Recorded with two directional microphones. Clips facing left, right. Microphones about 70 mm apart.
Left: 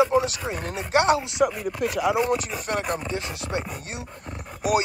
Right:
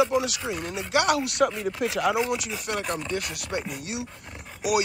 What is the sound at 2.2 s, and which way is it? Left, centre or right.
Speech, left.